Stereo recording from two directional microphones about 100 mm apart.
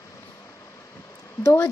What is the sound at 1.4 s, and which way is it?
Speech, 30° left (ahead or behind).